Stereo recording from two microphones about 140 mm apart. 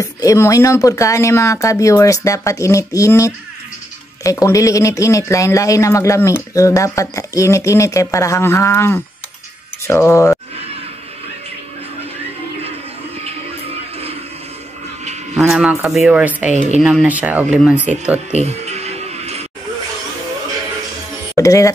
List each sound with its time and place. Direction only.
0.0 s speech: 20° left (ahead or behind)
15.3 s a man's voice: 5° right (ahead or behind)
16.5 s speech: 55° right (ahead or behind)
16.8 s speech: 5° right (ahead or behind)
18.3 s music: 50° right (ahead or behind)
21.4 s speech: 25° left (ahead or behind)